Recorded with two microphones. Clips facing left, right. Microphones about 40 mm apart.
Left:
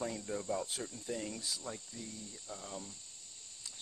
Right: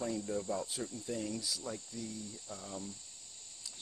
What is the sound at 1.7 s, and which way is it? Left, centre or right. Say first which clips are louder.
Speech: right 3 dB; centre.